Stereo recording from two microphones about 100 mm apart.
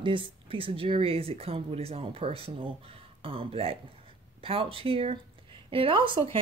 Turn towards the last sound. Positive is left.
turn(degrees=-60)  # may be behind; listen again after turning